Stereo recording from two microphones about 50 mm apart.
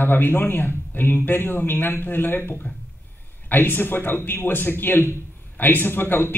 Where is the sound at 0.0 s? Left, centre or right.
Left.